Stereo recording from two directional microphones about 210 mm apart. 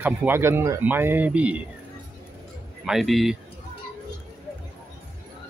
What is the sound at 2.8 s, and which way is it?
Speech, centre (ahead or behind).